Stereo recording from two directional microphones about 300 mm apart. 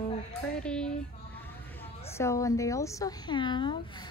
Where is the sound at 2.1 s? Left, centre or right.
Centre.